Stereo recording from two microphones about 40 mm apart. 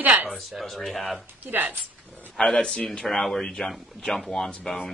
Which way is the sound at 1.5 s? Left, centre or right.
Right.